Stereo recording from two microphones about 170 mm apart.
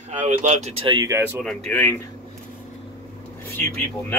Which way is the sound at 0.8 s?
20° right (ahead or behind).